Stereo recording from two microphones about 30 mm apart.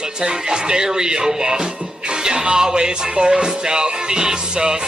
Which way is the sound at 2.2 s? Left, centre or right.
Right.